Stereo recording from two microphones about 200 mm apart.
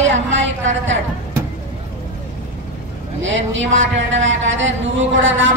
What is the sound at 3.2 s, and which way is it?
A man's voice, 70° right (ahead or behind).